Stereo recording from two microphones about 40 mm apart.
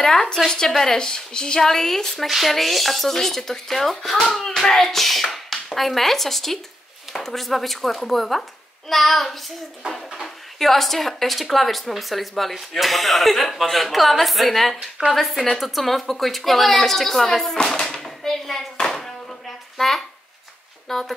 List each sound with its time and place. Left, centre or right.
0.0 s a woman's voice: centre
1.6 s a woman's voice: centre
2.2 s speech: centre
4.5 s a woman's voice: centre
14.8 s a woman's voice: centre
15.1 s speech: centre
17.6 s a sound: centre
20.9 s a woman's voice: centre